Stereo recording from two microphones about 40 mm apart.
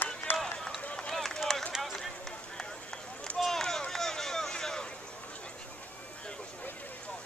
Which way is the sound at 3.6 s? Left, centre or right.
Centre.